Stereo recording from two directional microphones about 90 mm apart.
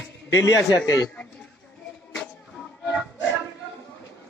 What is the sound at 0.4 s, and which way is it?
Speech, 30° left (ahead or behind).